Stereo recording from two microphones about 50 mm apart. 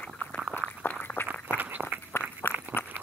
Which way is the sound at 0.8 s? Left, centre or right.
Left.